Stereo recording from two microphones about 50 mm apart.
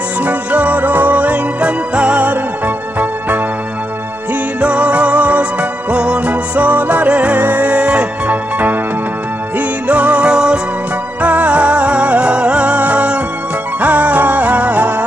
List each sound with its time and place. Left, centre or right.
0.2 s music: right
4.6 s music: right
8.3 s music: right